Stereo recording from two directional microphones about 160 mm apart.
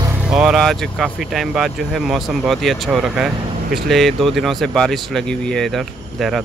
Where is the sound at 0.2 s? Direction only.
5° right (ahead or behind).